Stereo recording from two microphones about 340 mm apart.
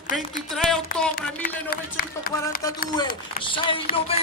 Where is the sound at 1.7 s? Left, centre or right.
Left.